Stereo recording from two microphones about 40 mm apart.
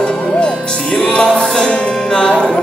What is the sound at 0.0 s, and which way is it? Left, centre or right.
Music, left.